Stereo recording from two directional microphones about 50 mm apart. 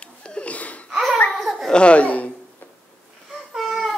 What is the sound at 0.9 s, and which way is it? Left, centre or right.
Babbling, centre.